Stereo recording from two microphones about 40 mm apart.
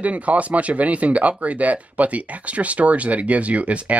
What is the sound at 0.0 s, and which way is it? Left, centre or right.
Speech, right.